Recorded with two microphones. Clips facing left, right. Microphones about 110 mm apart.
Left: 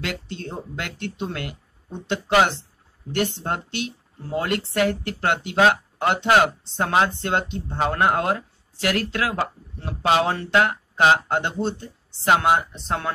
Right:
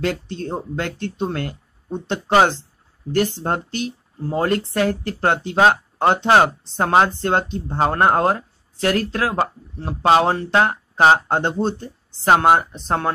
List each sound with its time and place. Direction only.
0.0 s speech: 35° right (ahead or behind)